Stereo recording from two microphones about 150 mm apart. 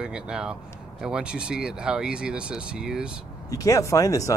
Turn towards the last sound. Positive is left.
turn(degrees=20)  # may be behind; listen again after turning